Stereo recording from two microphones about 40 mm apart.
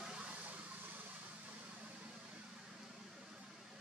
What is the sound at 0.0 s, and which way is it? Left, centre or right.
Vehicle, right.